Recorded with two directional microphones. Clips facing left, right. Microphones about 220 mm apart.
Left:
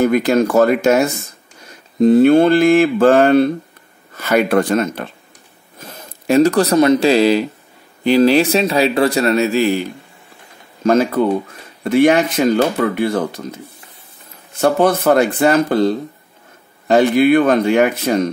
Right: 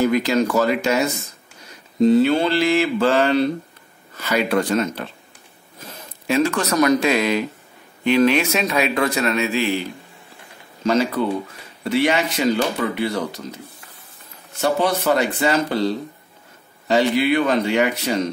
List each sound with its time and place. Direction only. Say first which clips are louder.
0.0 s speech: left 4 dB; 50° left (ahead or behind)
6.2 s a man's voice: left 7 dB; 40° left (ahead or behind)
14.6 s speech: left 6 dB; 50° left (ahead or behind)